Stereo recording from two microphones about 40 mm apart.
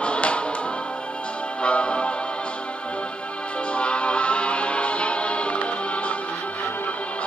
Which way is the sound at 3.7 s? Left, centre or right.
Left.